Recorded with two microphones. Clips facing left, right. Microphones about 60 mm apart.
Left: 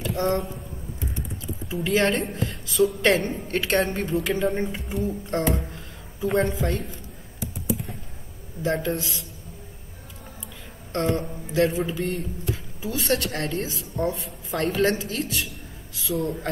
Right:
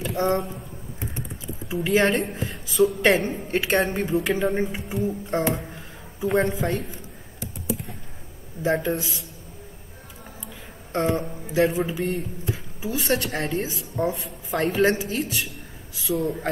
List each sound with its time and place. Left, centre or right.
0.1 s speech: centre
1.7 s a woman's voice: centre
2.1 s a woman's voice: centre
8.6 s a woman's voice: centre
10.9 s a woman's voice: centre
14.7 s a woman's voice: centre